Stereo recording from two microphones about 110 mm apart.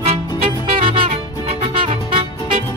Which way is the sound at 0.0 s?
55° right (ahead or behind).